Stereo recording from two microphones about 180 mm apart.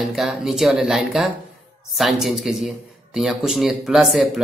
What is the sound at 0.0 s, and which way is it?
Speech, centre (ahead or behind).